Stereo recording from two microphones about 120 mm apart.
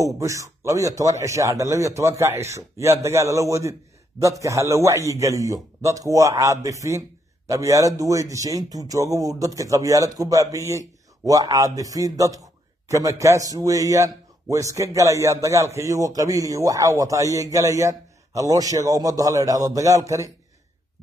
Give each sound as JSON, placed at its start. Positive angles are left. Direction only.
{"t": 0.0, "sound": "a man's voice", "side_deg": -25}